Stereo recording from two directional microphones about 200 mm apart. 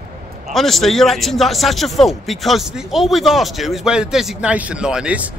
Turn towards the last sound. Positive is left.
turn(degrees=-5)  # may be behind; listen again after turning